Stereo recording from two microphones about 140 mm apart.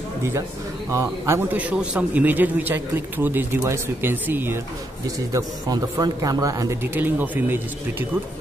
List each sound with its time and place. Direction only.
0.9 s a man's voice: 20° right (ahead or behind)
5.3 s a man's voice: 25° right (ahead or behind)